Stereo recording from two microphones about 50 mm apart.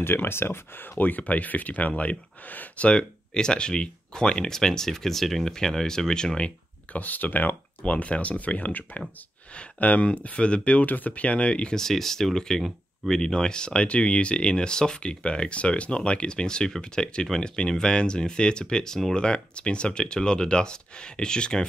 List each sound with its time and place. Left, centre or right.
0.0 s speech: left
2.9 s speech: centre
6.9 s speech: left
11.8 s speech: centre